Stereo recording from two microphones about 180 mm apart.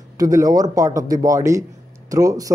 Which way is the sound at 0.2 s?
20° right (ahead or behind).